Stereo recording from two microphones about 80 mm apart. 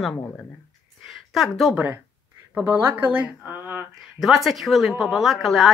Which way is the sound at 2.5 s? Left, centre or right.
Right.